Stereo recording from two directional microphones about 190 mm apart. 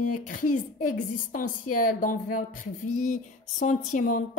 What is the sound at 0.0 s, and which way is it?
A woman's voice, 45° left (ahead or behind).